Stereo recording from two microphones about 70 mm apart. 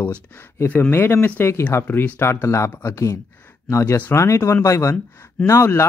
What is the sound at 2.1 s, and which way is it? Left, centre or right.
Speech, left.